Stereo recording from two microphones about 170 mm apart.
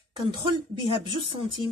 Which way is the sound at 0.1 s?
30° right (ahead or behind).